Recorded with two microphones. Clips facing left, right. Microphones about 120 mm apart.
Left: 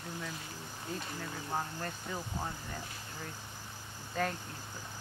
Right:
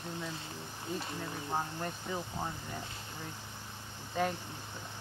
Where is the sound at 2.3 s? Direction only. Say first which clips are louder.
Right 1 dB; centre (ahead or behind).